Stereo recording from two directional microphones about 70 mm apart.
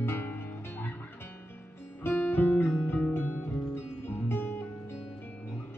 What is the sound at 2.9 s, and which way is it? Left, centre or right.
Music, left.